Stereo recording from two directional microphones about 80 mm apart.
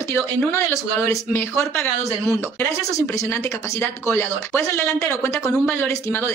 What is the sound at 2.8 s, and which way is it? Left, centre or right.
Speech, left.